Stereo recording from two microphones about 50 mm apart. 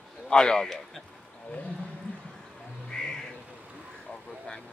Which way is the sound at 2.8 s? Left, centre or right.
Centre.